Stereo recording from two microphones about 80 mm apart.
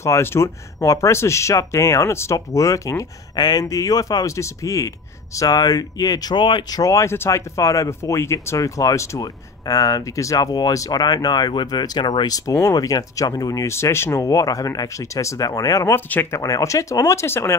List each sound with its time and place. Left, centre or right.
0.0 s speech: left
3.3 s speech: left
3.6 s speech: left
6.4 s speech: left
6.8 s speech: left
7.1 s speech: left
9.2 s speech: left
12.3 s speech: left
16.1 s speech: left
16.3 s speech: left